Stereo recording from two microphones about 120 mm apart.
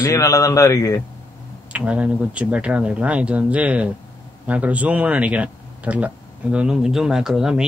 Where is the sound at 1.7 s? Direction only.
10° right (ahead or behind).